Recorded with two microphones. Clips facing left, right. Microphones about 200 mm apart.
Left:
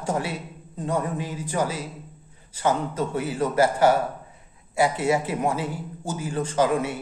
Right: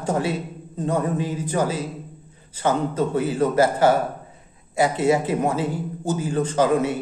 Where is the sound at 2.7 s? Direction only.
20° right (ahead or behind).